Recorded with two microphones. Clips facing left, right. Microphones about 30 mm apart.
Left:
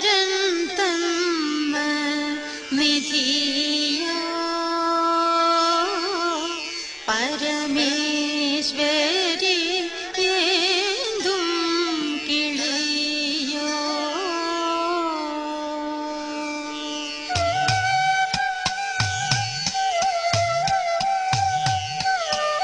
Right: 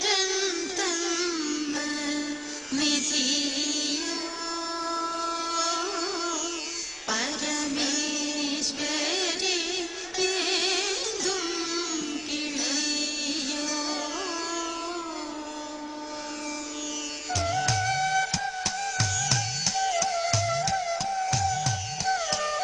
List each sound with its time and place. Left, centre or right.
0.0 s music: left
1.3 s music: left
14.6 s music: left
17.4 s music: left
19.8 s music: left